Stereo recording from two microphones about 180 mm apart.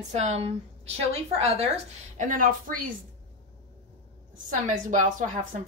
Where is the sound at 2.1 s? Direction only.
45° right (ahead or behind).